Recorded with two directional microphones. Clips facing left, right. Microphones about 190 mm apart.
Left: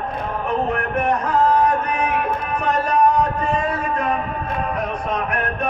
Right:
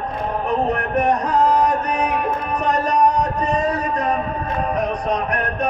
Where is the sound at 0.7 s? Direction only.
40° right (ahead or behind).